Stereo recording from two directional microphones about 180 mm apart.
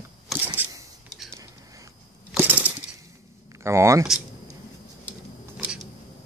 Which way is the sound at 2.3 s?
10° right (ahead or behind).